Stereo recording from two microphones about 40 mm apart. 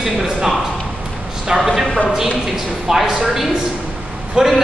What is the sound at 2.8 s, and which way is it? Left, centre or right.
Speech, centre.